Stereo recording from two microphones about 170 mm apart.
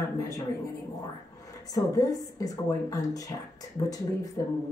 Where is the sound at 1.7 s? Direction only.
20° left (ahead or behind).